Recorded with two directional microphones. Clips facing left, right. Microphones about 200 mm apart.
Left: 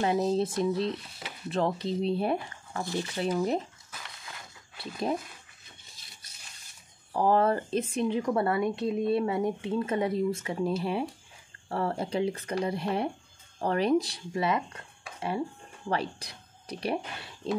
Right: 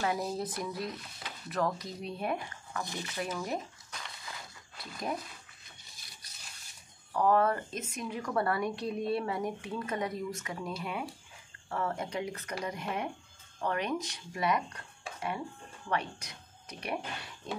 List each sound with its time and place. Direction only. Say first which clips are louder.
0.0 s speech: left 7 dB; 25° left (ahead or behind)
4.7 s speech: left 6 dB; 30° left (ahead or behind)
7.2 s speech: left 3 dB; 30° left (ahead or behind)